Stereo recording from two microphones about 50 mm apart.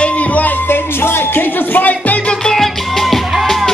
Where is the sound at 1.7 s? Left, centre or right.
Left.